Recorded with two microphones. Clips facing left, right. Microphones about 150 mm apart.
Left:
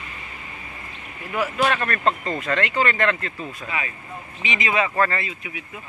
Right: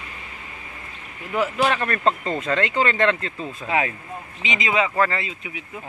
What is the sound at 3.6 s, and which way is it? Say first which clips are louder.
Speech: right 8 dB; 90° right.